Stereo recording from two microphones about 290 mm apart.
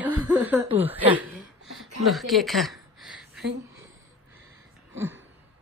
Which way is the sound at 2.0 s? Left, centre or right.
Centre.